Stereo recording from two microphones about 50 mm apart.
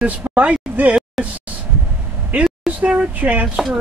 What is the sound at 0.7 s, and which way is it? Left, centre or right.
Speech, right.